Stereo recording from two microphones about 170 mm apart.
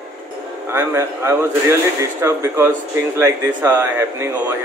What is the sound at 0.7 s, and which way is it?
A man's voice, 15° right (ahead or behind).